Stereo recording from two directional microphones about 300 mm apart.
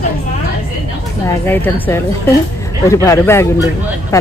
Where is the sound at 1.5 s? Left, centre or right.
Centre.